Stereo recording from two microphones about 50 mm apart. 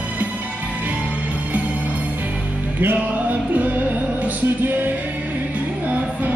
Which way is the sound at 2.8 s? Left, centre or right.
Right.